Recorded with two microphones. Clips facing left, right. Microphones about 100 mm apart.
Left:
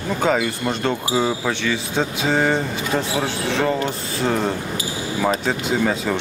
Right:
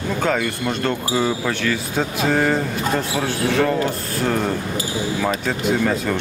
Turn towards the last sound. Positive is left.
turn(degrees=0)  # may be behind; listen again after turning